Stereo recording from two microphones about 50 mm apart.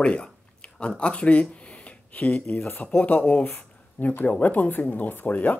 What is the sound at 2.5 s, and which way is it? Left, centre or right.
Speech, left.